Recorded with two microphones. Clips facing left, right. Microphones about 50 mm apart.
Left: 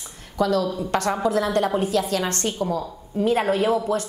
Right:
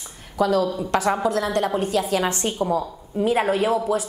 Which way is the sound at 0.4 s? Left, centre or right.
Centre.